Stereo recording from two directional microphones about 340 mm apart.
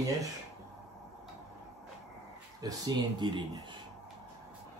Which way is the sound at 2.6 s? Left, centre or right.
Centre.